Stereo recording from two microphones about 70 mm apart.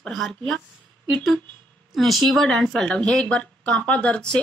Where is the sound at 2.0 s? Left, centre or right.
Centre.